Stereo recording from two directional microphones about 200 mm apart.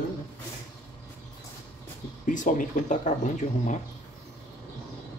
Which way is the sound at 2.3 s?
40° left (ahead or behind).